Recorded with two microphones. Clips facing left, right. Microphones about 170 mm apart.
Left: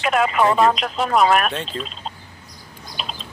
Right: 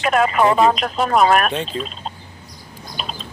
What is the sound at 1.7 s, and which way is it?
Speech, 10° right (ahead or behind).